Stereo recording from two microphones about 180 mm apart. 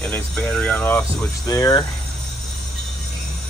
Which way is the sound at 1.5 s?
20° left (ahead or behind).